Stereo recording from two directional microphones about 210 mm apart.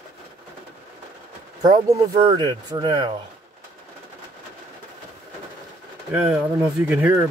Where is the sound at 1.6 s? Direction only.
20° right (ahead or behind).